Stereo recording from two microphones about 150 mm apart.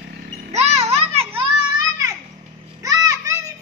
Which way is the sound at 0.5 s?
45° right (ahead or behind).